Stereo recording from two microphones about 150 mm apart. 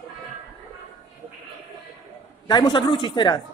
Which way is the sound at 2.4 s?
30° left (ahead or behind).